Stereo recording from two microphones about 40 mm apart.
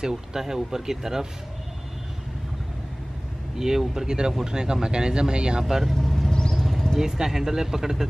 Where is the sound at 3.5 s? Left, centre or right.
Centre.